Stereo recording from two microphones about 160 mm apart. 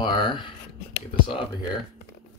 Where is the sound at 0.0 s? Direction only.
30° left (ahead or behind).